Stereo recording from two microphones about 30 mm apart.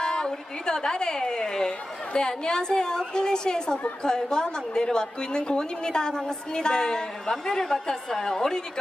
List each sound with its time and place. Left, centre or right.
0.0 s a woman's voice: left